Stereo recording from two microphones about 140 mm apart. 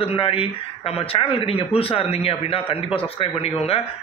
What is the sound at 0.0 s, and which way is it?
A man's voice, 40° left (ahead or behind).